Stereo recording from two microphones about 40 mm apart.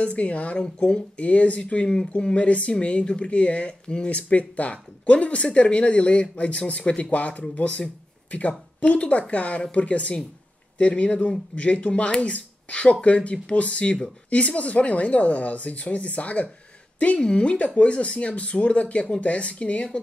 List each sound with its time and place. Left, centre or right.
0.0 s speech: left
2.3 s speech: left
4.2 s a woman's voice: left